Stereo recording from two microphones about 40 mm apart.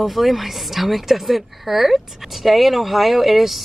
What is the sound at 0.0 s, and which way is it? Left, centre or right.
A woman's voice, centre.